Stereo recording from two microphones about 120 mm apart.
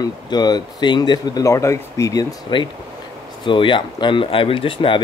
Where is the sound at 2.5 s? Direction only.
40° left (ahead or behind).